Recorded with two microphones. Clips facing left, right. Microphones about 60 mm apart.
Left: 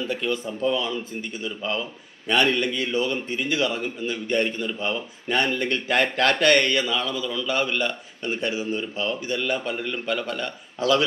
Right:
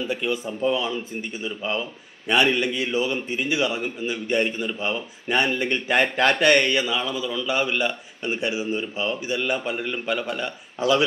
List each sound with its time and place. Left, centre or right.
0.0 s speech: centre